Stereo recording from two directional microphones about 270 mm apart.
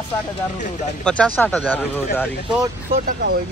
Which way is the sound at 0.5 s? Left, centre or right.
Left.